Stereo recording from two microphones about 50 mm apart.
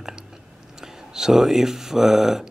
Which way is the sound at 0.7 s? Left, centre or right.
Centre.